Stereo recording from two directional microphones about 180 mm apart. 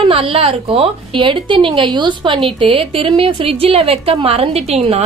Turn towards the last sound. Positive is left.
turn(degrees=-35)  # may be behind; listen again after turning